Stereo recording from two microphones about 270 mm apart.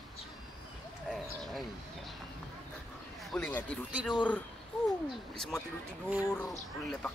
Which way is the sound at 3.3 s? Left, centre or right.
Centre.